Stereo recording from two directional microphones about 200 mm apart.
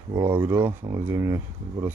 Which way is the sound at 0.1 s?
10° right (ahead or behind).